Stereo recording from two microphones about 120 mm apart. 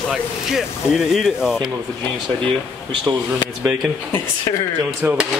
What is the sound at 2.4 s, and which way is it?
Speech, 45° right (ahead or behind).